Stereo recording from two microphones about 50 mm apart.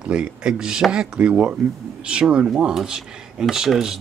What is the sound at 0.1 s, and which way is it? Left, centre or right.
Speech, right.